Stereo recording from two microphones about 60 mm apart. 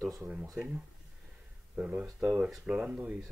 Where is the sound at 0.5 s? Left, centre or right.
Right.